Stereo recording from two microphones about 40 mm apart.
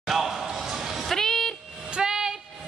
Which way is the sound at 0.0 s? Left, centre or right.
Centre.